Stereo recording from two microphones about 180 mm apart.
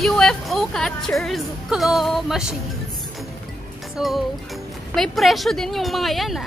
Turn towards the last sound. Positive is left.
turn(degrees=0)  # may be behind; listen again after turning